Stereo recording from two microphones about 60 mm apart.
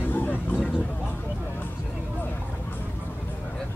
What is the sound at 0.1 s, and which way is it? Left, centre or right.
Vehicle, left.